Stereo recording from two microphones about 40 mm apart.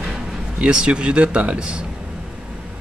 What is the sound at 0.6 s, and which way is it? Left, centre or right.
Speech, right.